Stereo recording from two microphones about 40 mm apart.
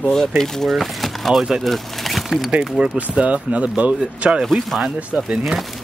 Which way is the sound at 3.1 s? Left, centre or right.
Right.